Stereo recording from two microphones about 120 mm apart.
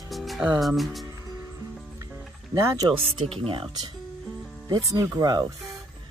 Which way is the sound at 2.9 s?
50° right (ahead or behind).